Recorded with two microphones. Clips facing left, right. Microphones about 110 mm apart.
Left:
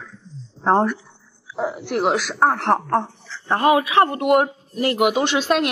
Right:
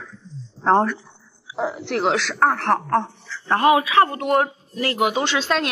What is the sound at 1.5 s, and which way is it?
Speech, centre (ahead or behind).